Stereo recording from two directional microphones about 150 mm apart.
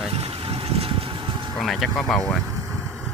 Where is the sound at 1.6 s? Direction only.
Centre (ahead or behind).